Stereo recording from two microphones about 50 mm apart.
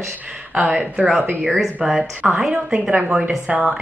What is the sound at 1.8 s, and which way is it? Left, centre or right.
Speech, centre.